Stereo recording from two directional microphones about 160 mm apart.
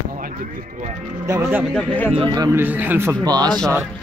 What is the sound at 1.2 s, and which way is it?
Speech, 15° right (ahead or behind).